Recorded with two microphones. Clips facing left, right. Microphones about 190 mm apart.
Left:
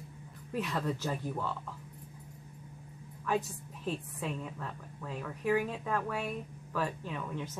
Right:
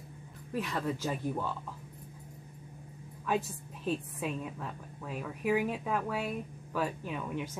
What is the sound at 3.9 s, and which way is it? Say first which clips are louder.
A woman's voice: right 3 dB; 15° right (ahead or behind).